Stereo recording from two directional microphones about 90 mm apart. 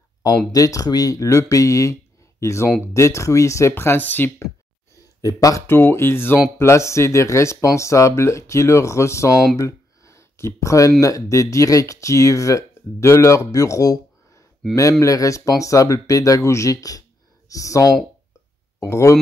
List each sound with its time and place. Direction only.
0.5 s speech: 40° left (ahead or behind); by 4.3 s 20° left (ahead or behind)
5.2 s speech: 40° left (ahead or behind)
5.7 s speech: 25° left (ahead or behind)